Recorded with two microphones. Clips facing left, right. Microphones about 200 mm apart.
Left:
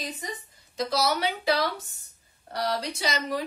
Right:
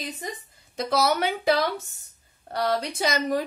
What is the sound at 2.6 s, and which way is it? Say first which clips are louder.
Speech: right 4 dB; 50° right (ahead or behind).